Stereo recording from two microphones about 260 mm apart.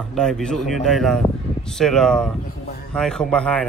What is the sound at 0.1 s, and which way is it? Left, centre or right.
Speech, centre.